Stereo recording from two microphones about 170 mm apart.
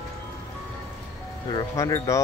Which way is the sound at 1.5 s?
20° left (ahead or behind).